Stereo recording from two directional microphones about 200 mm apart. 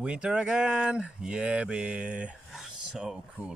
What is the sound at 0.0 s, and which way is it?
Speech, 5° right (ahead or behind).